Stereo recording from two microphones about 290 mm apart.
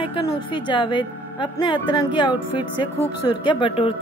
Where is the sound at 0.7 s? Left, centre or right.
Centre.